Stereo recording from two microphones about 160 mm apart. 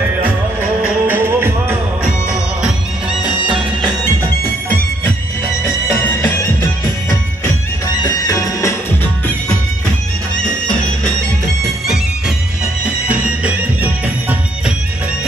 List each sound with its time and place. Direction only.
0.2 s music: 10° right (ahead or behind)
4.0 s music: 15° left (ahead or behind)
12.8 s music: 10° right (ahead or behind)